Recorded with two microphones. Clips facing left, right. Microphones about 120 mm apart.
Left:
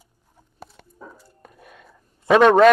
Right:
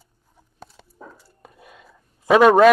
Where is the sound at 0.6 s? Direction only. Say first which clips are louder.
Left 1 dB; centre (ahead or behind).